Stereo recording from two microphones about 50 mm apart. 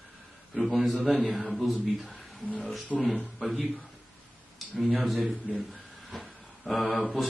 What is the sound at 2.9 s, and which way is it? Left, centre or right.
Speech, left.